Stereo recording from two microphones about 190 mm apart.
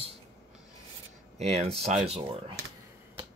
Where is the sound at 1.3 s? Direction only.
35° right (ahead or behind).